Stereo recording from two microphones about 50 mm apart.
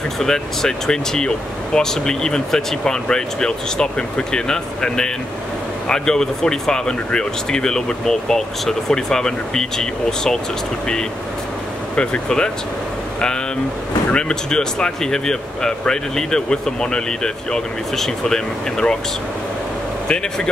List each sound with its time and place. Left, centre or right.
0.2 s speech: centre
11.9 s speech: left
14.1 s speech: centre